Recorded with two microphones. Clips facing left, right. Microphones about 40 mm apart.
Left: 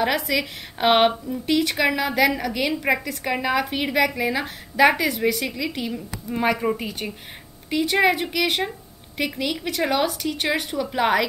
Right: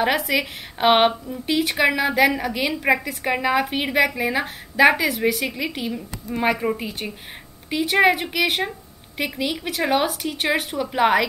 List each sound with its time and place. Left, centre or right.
0.3 s a woman's voice: centre